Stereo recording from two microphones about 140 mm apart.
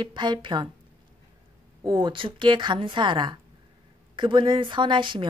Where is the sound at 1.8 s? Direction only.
35° right (ahead or behind).